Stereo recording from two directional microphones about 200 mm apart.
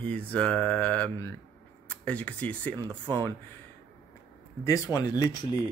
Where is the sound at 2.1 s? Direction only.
5° left (ahead or behind).